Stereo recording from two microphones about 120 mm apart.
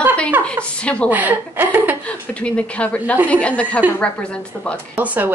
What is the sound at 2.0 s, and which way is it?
Speech, 10° left (ahead or behind).